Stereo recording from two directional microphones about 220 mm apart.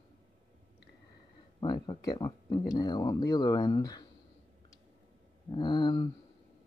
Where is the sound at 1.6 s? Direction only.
15° left (ahead or behind).